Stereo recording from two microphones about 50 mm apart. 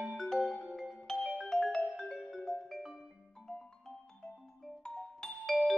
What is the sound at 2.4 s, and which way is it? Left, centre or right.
Music, centre.